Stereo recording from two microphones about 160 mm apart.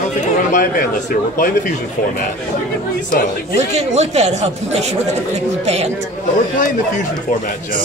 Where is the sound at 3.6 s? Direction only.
45° right (ahead or behind).